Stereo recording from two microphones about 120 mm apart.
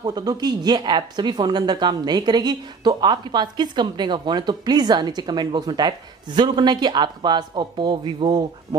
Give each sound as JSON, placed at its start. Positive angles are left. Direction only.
{"t": 0.0, "sound": "speech", "side_deg": -35}